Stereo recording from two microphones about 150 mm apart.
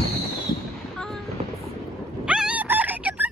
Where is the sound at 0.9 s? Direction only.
5° left (ahead or behind).